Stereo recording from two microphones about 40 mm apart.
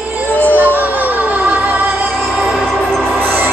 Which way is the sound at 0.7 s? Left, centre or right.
Right.